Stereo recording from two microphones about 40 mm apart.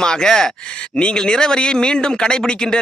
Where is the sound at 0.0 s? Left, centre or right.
Centre.